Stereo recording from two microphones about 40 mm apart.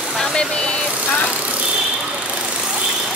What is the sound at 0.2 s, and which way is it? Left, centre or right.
Vehicle, centre.